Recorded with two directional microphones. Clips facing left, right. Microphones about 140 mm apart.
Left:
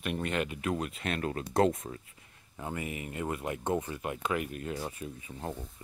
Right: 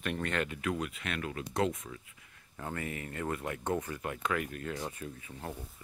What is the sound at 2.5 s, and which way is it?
Speech, 15° left (ahead or behind).